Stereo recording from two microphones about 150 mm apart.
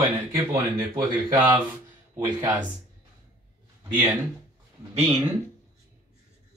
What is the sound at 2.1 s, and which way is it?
Speech, 30° right (ahead or behind).